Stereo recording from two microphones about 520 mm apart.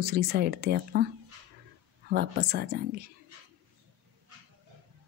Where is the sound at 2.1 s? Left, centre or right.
Centre.